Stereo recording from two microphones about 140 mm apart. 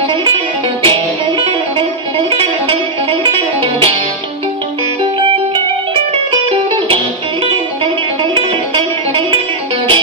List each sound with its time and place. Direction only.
0.1 s music: 35° right (ahead or behind)
6.3 s music: 40° right (ahead or behind)